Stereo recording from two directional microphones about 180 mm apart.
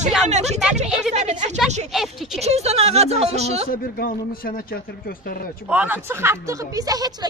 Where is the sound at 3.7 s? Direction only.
50° left (ahead or behind).